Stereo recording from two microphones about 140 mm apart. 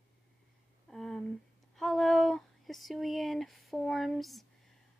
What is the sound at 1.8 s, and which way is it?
Speech, centre (ahead or behind).